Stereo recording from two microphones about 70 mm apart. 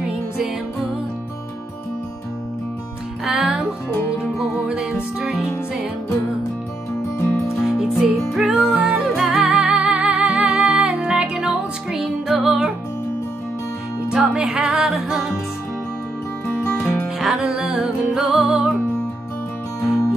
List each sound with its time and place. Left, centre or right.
3.3 s music: centre
8.0 s music: centre
14.1 s music: centre
17.2 s music: centre
19.8 s music: left